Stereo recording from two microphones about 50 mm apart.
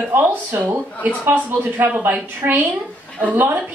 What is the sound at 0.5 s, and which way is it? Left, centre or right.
A woman's voice, right.